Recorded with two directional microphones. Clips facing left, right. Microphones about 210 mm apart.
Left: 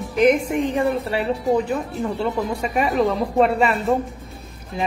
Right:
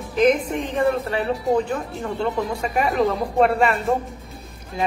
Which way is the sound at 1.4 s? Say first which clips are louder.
Left 1 dB; centre (ahead or behind).